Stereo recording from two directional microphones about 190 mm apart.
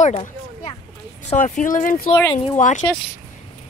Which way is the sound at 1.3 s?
45° left (ahead or behind).